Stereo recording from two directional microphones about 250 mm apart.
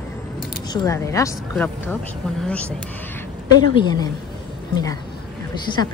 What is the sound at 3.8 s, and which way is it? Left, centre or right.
Speech, centre.